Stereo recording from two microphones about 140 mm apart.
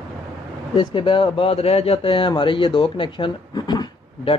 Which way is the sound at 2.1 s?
35° left (ahead or behind).